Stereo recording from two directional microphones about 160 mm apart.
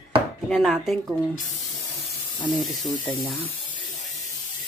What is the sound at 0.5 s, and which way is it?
Speech, centre (ahead or behind).